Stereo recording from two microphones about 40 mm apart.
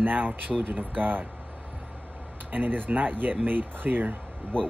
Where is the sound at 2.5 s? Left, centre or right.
Right.